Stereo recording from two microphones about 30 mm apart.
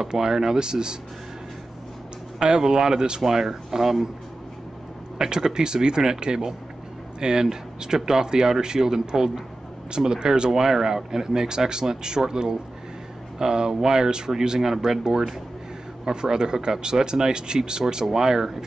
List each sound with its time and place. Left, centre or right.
0.0 s speech: centre
2.3 s speech: right
5.2 s speech: right
9.8 s speech: right
10.5 s speech: centre